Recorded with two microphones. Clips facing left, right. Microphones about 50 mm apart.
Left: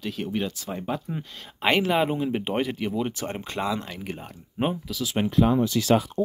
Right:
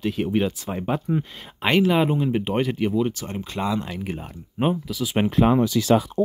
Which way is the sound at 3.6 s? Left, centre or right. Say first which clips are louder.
Right 3 dB; centre.